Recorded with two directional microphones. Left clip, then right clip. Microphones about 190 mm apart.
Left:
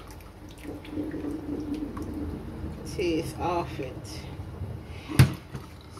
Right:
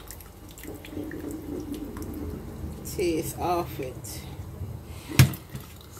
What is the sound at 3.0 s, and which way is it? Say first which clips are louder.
Speech: right 1 dB; 20° right (ahead or behind).